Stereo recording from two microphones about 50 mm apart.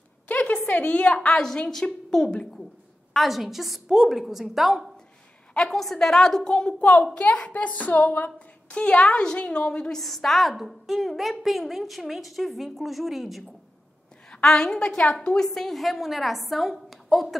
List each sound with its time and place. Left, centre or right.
0.3 s a sound: left
0.7 s a woman's voice: left; by 2.6 s centre
3.1 s a woman's voice: centre
6.8 s a woman's voice: left
9.9 s a woman's voice: centre
14.3 s a woman's voice: centre
16.9 s a sound: centre